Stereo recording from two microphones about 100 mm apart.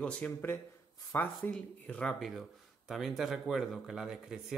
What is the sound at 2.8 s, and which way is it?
A man's voice, centre (ahead or behind).